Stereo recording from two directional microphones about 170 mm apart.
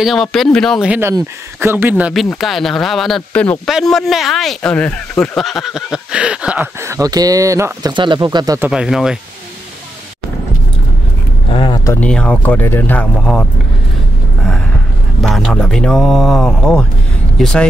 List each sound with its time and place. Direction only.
0.0 s speech: centre (ahead or behind); by 7.9 s 15° right (ahead or behind)
7.9 s speech: 30° right (ahead or behind)
8.5 s speech: 5° right (ahead or behind)
11.5 s speech: 25° left (ahead or behind)
12.0 s speech: 5° left (ahead or behind)
15.2 s speech: centre (ahead or behind)